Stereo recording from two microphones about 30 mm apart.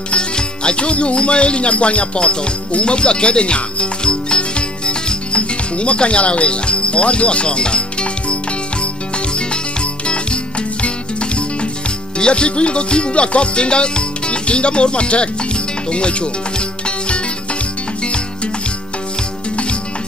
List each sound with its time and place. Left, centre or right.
0.1 s music: left
10.0 s music: left
12.2 s music: left